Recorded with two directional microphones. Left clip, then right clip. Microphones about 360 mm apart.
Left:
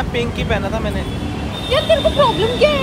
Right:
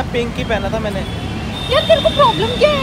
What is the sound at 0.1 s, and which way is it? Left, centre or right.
Speech, centre.